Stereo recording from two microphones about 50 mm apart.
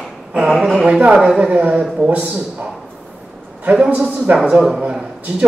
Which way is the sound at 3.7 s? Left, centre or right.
Centre.